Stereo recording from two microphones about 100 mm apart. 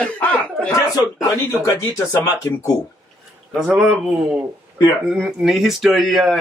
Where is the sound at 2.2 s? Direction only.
35° left (ahead or behind).